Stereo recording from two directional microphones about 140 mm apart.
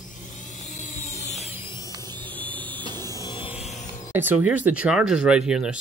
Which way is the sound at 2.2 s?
10° left (ahead or behind).